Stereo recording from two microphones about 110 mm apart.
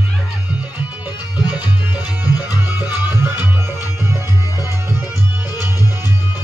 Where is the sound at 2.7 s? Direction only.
15° right (ahead or behind).